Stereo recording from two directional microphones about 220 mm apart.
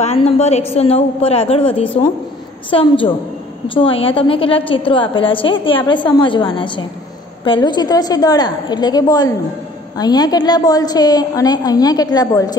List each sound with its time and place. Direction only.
0.0 s a woman's voice: 30° left (ahead or behind)